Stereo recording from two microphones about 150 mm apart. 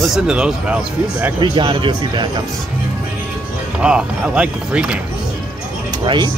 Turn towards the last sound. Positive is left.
turn(degrees=-30)  # may be behind; listen again after turning